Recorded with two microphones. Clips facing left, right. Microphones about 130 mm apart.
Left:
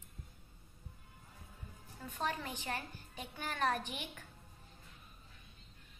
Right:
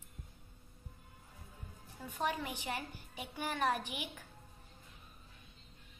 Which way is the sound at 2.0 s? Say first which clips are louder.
Right 2 dB; 15° right (ahead or behind).